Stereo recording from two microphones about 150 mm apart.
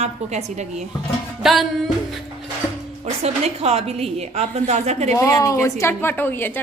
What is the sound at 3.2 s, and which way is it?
A woman's voice, 45° right (ahead or behind).